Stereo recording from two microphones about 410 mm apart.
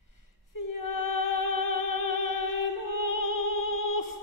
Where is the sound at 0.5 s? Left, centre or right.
Left.